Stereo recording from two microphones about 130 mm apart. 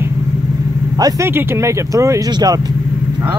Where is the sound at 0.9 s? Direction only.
30° right (ahead or behind).